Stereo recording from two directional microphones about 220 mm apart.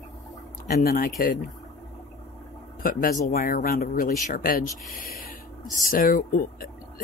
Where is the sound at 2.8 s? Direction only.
40° left (ahead or behind).